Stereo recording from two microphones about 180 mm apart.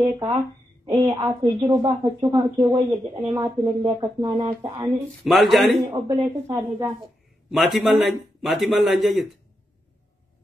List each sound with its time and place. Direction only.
1.0 s speech: 25° right (ahead or behind)
4.9 s a man's voice: centre (ahead or behind)
5.9 s speech: 25° right (ahead or behind)
7.5 s a man's voice: centre (ahead or behind)